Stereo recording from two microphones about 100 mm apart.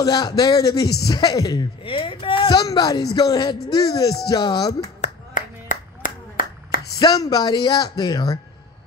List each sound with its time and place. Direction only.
0.0 s speech: 40° left (ahead or behind)
1.8 s speech: 60° left (ahead or behind); by 4.8 s 45° left (ahead or behind)
7.0 s speech: 40° left (ahead or behind)